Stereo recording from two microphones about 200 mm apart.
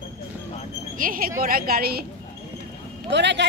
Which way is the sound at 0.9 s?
45° right (ahead or behind).